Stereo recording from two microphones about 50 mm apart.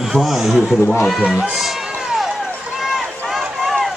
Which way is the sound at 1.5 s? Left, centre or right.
Centre.